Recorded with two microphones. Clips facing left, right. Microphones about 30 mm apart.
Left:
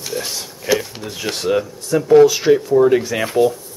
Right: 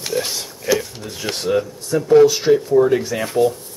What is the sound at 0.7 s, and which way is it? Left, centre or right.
Speech, centre.